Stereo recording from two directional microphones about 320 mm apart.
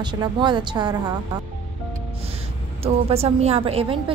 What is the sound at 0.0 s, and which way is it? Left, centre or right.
Speech, centre.